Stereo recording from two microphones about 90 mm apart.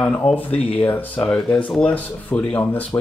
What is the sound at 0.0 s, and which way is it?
Speech, 10° left (ahead or behind).